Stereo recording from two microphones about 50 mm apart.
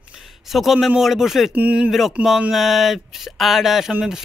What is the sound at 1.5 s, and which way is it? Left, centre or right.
Speech, right.